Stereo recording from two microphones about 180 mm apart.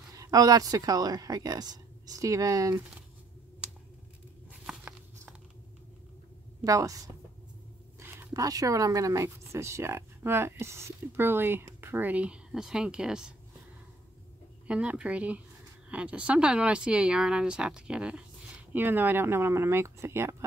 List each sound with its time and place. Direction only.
0.2 s speech: 20° right (ahead or behind)
4.5 s a sound: 10° right (ahead or behind)
6.6 s speech: 20° right (ahead or behind)
8.0 s speech: 20° right (ahead or behind)
14.7 s speech: 5° right (ahead or behind)